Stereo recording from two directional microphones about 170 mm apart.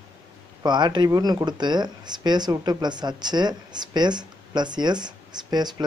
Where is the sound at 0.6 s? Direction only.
25° right (ahead or behind).